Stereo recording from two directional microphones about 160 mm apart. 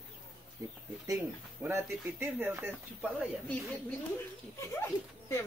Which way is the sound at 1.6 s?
15° right (ahead or behind).